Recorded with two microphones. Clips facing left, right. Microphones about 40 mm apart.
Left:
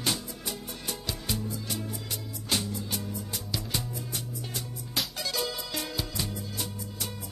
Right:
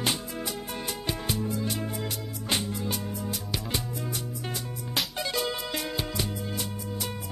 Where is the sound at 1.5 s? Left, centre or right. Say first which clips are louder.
Right 5 dB; right.